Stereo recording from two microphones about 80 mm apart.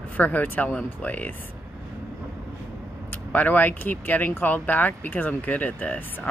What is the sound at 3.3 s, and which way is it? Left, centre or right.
Speech, left.